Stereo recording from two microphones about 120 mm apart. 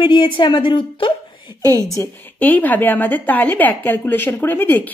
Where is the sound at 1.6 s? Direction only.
30° left (ahead or behind).